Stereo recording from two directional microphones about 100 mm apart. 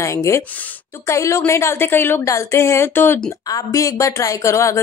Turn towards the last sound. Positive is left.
turn(degrees=30)  # may be behind; listen again after turning